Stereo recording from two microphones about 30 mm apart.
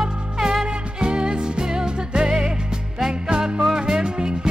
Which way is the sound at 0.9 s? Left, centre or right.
Right.